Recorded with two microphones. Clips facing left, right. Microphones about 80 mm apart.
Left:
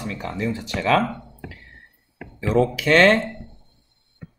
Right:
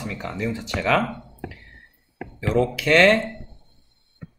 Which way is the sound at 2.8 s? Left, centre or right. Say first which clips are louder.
Even; left.